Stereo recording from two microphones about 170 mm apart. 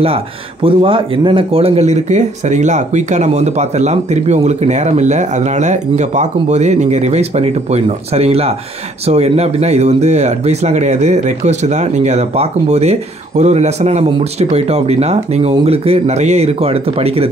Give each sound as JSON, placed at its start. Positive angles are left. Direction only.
{"t": 0.0, "sound": "speech", "side_deg": -35}